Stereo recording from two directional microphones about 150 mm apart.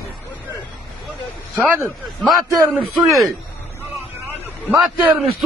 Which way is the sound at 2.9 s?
Centre (ahead or behind).